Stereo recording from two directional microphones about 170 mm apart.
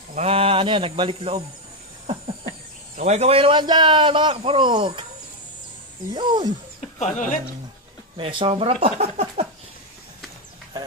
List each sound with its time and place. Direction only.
0.1 s speech: 35° right (ahead or behind)
3.0 s a man's voice: 40° right (ahead or behind)
6.1 s a man's voice: 25° right (ahead or behind)
7.0 s a woman's voice: 50° left (ahead or behind)
8.2 s speech: 30° right (ahead or behind)